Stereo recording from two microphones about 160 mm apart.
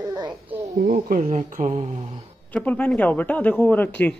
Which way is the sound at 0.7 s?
60° right (ahead or behind).